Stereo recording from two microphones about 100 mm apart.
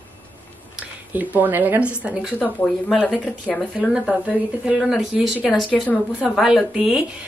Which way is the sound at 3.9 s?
10° right (ahead or behind).